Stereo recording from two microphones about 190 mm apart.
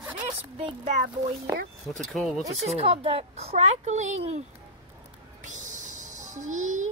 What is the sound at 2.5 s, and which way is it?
A woman's voice, 35° right (ahead or behind).